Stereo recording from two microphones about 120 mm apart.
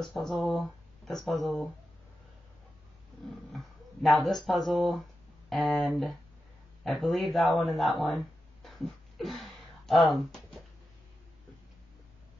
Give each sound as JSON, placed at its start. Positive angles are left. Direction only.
{"t": 0.0, "sound": "speech", "side_deg": 0}
{"t": 3.5, "sound": "a man's voice", "side_deg": 0}
{"t": 8.6, "sound": "a sound", "side_deg": 0}